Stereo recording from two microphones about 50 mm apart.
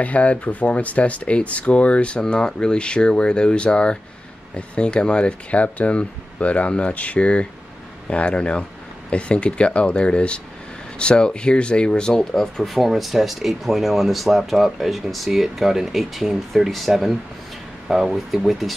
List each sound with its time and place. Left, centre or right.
0.0 s speech: left; by 12.7 s centre
12.7 s speech: centre